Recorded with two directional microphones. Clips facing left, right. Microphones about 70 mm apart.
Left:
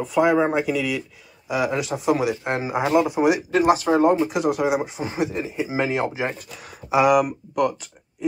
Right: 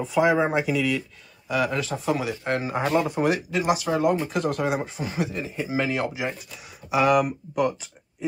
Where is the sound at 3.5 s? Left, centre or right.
Left.